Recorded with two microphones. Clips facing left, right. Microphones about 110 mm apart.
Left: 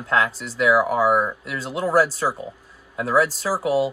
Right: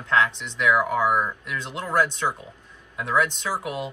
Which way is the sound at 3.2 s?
35° left (ahead or behind).